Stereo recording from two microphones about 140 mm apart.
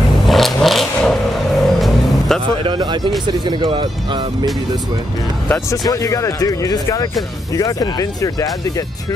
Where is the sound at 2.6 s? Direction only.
30° right (ahead or behind).